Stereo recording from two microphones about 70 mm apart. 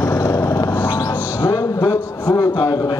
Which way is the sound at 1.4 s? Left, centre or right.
Left.